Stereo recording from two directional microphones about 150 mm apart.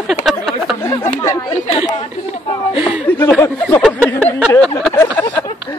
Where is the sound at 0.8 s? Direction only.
20° left (ahead or behind).